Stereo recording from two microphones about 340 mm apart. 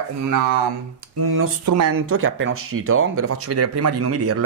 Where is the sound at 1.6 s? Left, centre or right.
Right.